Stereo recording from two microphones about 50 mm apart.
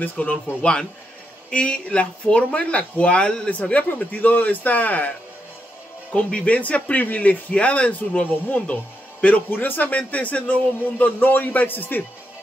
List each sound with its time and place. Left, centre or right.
0.0 s speech: left
6.1 s speech: left